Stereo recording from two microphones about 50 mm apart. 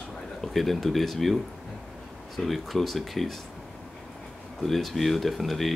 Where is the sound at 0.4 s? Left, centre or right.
Centre.